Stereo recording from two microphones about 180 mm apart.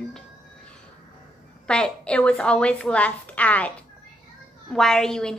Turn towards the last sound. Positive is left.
turn(degrees=5)  # may be behind; listen again after turning